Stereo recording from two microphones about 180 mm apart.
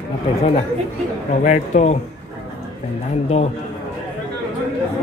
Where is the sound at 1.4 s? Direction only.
40° left (ahead or behind).